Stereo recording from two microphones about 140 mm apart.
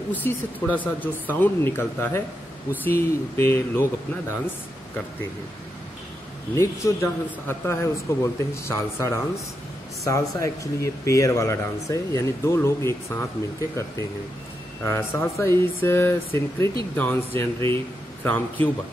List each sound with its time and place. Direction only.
0.1 s speech: 10° left (ahead or behind)
6.5 s a man's voice: 20° left (ahead or behind)